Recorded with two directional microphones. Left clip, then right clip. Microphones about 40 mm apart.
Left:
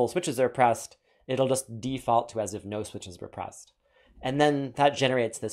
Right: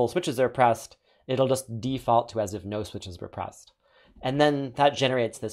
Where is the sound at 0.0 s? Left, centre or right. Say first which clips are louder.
Right 1 dB; left.